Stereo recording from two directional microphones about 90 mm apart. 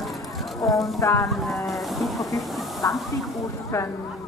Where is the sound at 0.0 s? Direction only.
Centre (ahead or behind).